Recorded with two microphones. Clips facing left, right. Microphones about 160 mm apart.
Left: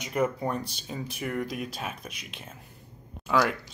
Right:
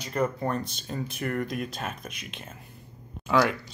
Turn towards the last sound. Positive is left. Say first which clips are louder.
# right 2 dB
turn(degrees=-5)  # may be behind; listen again after turning